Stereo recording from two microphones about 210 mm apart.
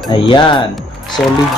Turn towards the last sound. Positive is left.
turn(degrees=20)  # may be behind; listen again after turning